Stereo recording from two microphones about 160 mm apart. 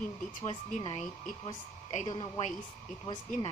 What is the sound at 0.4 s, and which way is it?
Speech, 50° left (ahead or behind).